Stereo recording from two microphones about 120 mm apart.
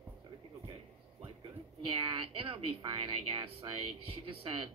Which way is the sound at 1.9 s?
45° right (ahead or behind).